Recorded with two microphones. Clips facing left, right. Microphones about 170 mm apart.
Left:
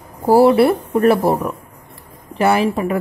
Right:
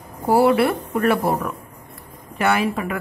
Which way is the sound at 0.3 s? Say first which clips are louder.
Left 5 dB; 30° left (ahead or behind).